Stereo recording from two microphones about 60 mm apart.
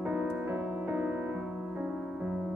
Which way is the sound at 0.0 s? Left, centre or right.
Centre.